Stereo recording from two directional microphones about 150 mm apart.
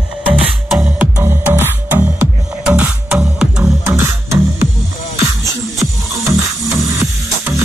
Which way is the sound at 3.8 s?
20° right (ahead or behind).